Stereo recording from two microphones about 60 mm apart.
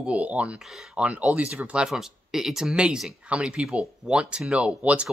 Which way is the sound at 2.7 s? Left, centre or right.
Centre.